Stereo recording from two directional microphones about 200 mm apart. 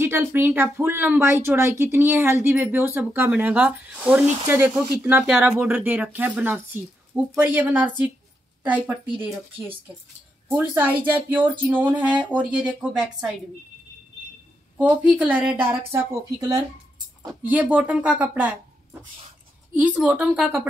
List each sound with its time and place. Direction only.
0.0 s speech: 10° right (ahead or behind)
10.5 s speech: 10° right (ahead or behind)
14.8 s speech: 5° right (ahead or behind)
19.7 s a woman's voice: 5° right (ahead or behind)